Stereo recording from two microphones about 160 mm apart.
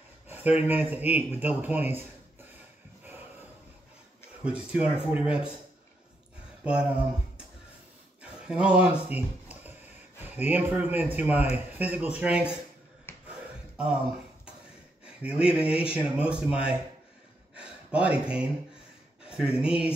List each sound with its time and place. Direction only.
0.3 s speech: 10° right (ahead or behind)
4.4 s speech: 5° right (ahead or behind)
6.6 s speech: 5° right (ahead or behind)
8.2 s speech: 5° right (ahead or behind)
13.1 s a sound: 15° left (ahead or behind)
15.0 s speech: 5° right (ahead or behind)
17.6 s a sound: 5° right (ahead or behind)
19.2 s speech: 5° right (ahead or behind)